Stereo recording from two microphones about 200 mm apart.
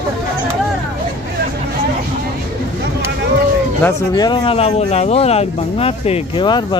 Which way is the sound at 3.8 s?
20° left (ahead or behind).